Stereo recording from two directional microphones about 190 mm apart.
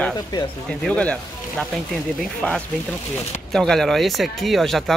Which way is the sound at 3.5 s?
Centre (ahead or behind).